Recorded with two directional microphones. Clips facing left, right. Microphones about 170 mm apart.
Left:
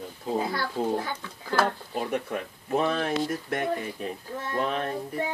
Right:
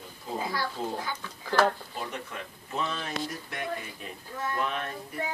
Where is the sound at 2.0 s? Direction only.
55° left (ahead or behind).